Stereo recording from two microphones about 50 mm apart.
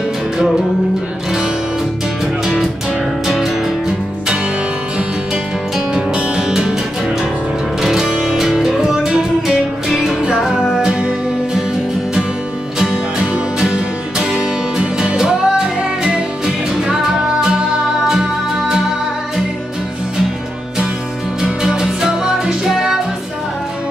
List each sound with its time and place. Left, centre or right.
2.4 s music: centre
5.9 s music: centre
7.8 s music: centre
13.6 s music: centre
21.4 s music: centre